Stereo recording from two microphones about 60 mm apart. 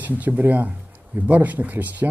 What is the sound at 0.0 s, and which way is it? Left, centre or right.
Speech, right.